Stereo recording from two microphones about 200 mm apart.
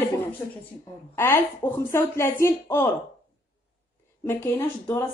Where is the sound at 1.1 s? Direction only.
10° left (ahead or behind).